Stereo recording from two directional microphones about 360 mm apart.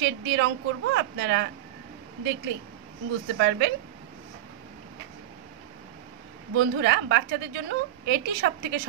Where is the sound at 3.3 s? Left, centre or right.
Right.